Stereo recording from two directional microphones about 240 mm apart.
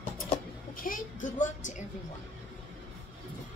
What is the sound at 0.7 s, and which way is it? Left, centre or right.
A woman's voice, left.